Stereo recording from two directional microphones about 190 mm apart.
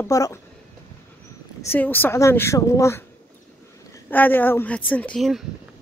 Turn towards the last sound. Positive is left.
turn(degrees=0)  # may be behind; listen again after turning